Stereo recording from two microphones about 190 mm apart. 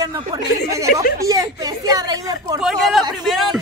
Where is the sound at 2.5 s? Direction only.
Centre (ahead or behind).